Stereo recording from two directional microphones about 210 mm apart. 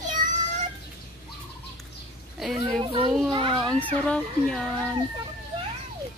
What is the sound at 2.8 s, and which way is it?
Children playing, 20° right (ahead or behind).